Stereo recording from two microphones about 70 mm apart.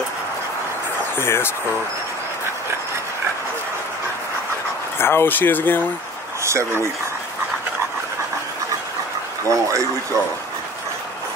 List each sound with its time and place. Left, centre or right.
1.1 s speech: left
4.9 s speech: left
6.4 s speech: right
9.5 s speech: right